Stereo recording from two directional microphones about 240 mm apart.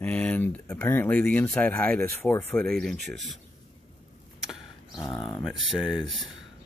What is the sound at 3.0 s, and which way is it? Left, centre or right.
Speech, right.